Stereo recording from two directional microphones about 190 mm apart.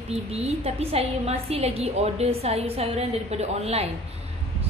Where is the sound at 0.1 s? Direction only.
35° right (ahead or behind).